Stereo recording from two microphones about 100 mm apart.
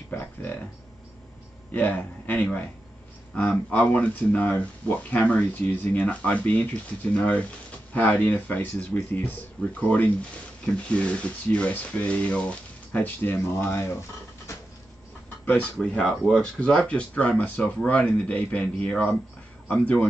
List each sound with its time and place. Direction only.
0.1 s a sound: 20° left (ahead or behind)
1.7 s a man's voice: 15° left (ahead or behind)
15.4 s speech: 10° left (ahead or behind)